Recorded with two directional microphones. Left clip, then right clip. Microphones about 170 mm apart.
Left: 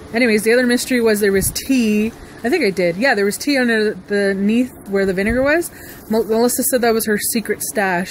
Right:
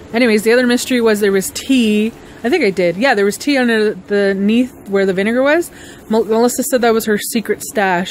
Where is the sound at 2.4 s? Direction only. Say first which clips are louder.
Right 3 dB; 5° right (ahead or behind).